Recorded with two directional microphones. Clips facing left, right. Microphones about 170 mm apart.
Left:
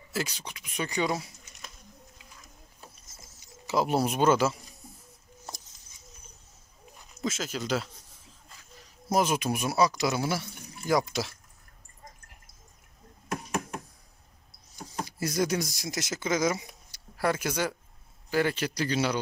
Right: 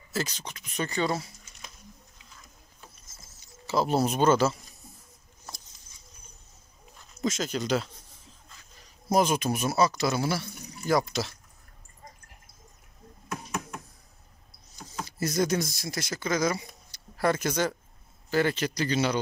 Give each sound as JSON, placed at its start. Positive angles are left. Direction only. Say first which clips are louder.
{"t": 0.1, "sound": "speech", "louder": "right 1 dB", "side_deg": 10}
{"t": 3.3, "sound": "speech", "louder": "even", "side_deg": 15}
{"t": 5.5, "sound": "a sound", "louder": "left 2 dB", "side_deg": 25}
{"t": 7.2, "sound": "speech", "louder": "right 3 dB", "side_deg": 5}
{"t": 9.1, "sound": "speech", "louder": "right 2 dB", "side_deg": 5}
{"t": 15.0, "sound": "speech", "louder": "right 2 dB", "side_deg": 10}
{"t": 17.2, "sound": "speech", "louder": "right 2 dB", "side_deg": 10}